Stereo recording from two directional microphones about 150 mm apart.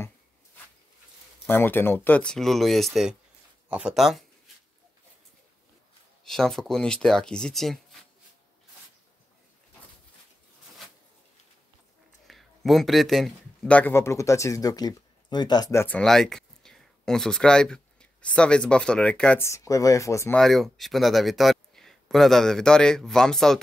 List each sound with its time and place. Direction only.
1.5 s speech: 15° left (ahead or behind); by 4.2 s centre (ahead or behind)
6.2 s speech: 5° left (ahead or behind)
12.3 s speech: centre (ahead or behind); by 16.0 s 20° left (ahead or behind)
16.0 s speech: 5° left (ahead or behind)
19.4 s speech: 20° left (ahead or behind)
20.3 s speech: centre (ahead or behind)